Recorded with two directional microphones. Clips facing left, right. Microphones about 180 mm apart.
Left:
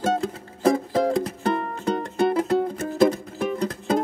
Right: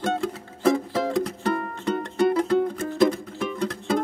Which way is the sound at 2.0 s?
30° left (ahead or behind).